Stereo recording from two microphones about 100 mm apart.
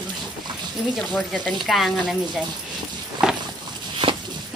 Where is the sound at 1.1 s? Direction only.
10° left (ahead or behind).